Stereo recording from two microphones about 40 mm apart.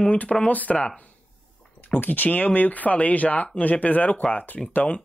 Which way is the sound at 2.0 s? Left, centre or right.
Left.